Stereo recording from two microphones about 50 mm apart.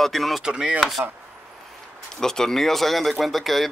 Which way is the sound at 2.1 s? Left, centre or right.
Centre.